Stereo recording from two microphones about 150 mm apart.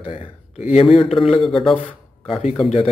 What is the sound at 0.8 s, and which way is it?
Speech, 40° left (ahead or behind).